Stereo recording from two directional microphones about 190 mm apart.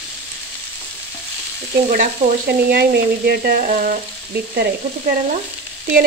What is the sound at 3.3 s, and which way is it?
Frying, 55° right (ahead or behind).